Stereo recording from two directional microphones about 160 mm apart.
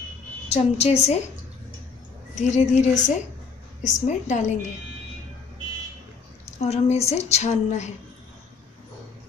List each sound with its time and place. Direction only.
0.5 s a woman's voice: 45° left (ahead or behind)
2.3 s a woman's voice: 45° left (ahead or behind)
6.6 s a woman's voice: 40° left (ahead or behind)